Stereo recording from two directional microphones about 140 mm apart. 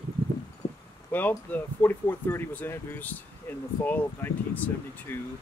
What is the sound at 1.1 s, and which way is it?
Speech, 10° left (ahead or behind).